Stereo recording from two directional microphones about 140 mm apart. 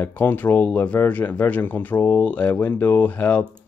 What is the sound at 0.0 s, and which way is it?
Speech, 15° left (ahead or behind).